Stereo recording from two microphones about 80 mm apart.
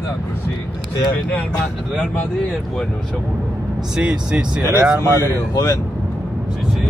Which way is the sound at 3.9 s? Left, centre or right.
Centre.